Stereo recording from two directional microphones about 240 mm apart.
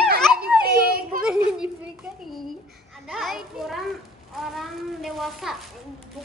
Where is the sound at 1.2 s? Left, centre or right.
Centre.